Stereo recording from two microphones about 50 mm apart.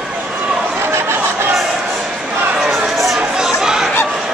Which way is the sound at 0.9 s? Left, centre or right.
Right.